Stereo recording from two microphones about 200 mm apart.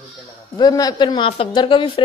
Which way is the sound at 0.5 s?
20° left (ahead or behind).